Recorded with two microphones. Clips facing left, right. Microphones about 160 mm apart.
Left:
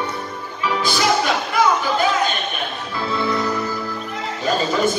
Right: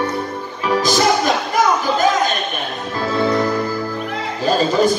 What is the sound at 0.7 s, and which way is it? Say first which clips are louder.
Music: right 4 dB; 40° right (ahead or behind).